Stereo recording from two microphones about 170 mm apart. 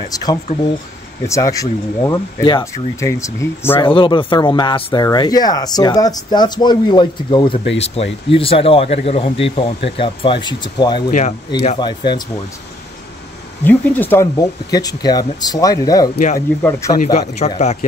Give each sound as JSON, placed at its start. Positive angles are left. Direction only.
{"t": 0.1, "sound": "speech", "side_deg": 20}
{"t": 3.8, "sound": "speech", "side_deg": 30}
{"t": 11.1, "sound": "speech", "side_deg": 45}
{"t": 11.8, "sound": "speech", "side_deg": 25}
{"t": 13.7, "sound": "speech", "side_deg": 10}
{"t": 17.4, "sound": "speech", "side_deg": 40}